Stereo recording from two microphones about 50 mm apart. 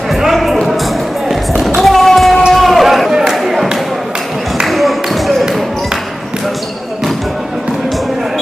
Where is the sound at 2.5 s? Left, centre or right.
Centre.